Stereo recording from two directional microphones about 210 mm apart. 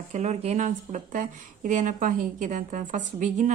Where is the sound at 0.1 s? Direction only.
35° right (ahead or behind).